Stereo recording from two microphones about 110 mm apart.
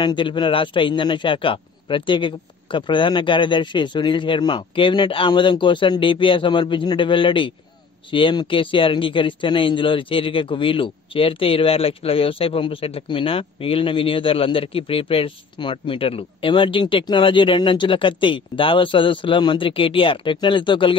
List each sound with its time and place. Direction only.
0.0 s speech: 45° left (ahead or behind)